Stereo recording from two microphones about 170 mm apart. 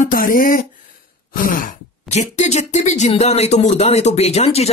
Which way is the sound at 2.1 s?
45° left (ahead or behind).